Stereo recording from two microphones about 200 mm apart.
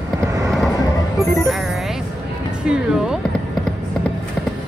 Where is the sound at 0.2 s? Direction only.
15° right (ahead or behind).